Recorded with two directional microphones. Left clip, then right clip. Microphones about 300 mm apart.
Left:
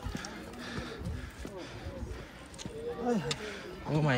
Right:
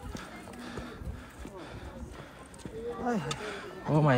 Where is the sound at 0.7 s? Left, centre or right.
Centre.